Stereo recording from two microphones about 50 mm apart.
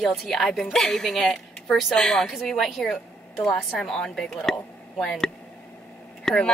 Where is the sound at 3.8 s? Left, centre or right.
Centre.